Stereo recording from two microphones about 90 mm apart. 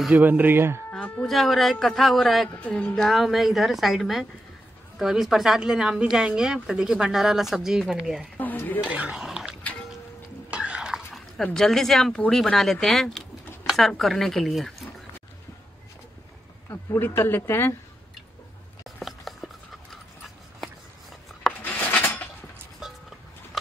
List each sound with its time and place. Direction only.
0.1 s speech: 20° right (ahead or behind)
0.9 s music: 15° left (ahead or behind)
1.2 s a woman's voice: centre (ahead or behind)
2.5 s speech: 15° left (ahead or behind)
3.0 s a woman's voice: centre (ahead or behind)
8.4 s dishes: 20° left (ahead or behind)
8.8 s speech: 10° right (ahead or behind)
9.2 s dog: 5° right (ahead or behind)
9.6 s music: 15° left (ahead or behind)
10.5 s stir: 15° right (ahead or behind)
11.5 s a woman's voice: 5° left (ahead or behind)
16.9 s speech: 30° left (ahead or behind)
19.0 s a sound: centre (ahead or behind)
21.6 s filing: 20° left (ahead or behind)